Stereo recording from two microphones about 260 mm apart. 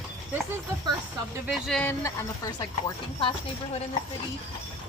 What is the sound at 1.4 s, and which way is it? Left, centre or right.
Speech, centre.